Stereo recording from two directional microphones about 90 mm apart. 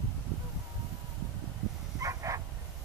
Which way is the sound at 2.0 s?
35° right (ahead or behind).